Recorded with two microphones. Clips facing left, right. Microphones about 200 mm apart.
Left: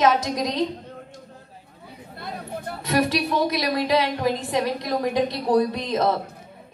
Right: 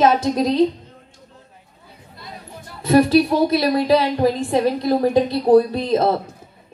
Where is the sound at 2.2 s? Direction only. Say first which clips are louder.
Left 6 dB; 60° left (ahead or behind).